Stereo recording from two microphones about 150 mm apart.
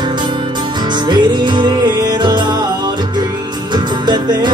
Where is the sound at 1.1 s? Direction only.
30° right (ahead or behind).